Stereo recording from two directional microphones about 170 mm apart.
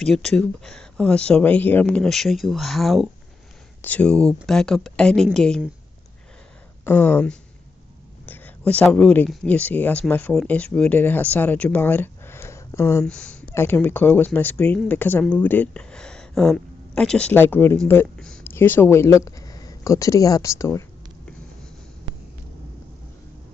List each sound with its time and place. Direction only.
0.0 s speech: 5° left (ahead or behind)
6.8 s speech: 15° left (ahead or behind)
13.0 s speech: 5° left (ahead or behind)